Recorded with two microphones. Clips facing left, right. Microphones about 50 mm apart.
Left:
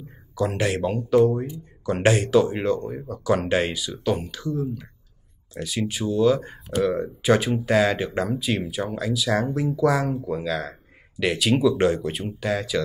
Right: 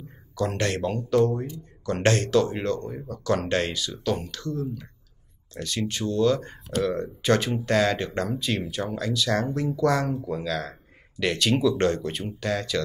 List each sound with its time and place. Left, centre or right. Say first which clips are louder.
0.4 s speech: left 2 dB; centre